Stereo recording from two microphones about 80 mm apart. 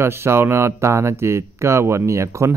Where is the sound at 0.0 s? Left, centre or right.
Right.